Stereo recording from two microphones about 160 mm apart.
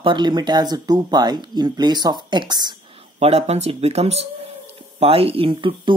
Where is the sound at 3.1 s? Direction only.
40° right (ahead or behind).